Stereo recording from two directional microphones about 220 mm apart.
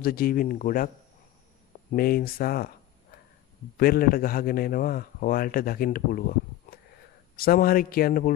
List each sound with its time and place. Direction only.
0.0 s a man's voice: 40° left (ahead or behind)
1.9 s a man's voice: 40° left (ahead or behind)
3.7 s a man's voice: 40° left (ahead or behind)